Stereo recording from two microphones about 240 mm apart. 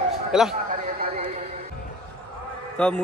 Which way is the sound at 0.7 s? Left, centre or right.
Right.